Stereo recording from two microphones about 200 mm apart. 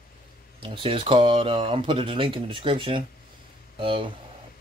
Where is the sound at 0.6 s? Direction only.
25° right (ahead or behind).